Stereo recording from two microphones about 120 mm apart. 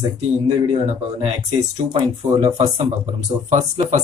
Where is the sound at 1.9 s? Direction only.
55° right (ahead or behind).